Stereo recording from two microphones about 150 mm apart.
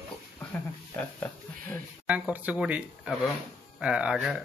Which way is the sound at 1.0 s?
10° left (ahead or behind).